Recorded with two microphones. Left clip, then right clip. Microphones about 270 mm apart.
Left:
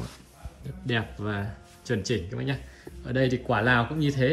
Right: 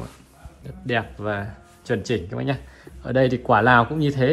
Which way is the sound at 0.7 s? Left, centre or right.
Centre.